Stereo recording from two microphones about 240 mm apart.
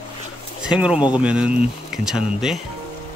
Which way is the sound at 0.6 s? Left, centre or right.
Centre.